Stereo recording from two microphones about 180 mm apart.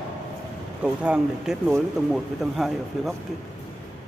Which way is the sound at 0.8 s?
5° right (ahead or behind).